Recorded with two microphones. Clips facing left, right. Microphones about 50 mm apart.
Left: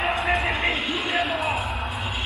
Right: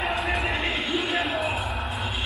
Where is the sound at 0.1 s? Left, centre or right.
Left.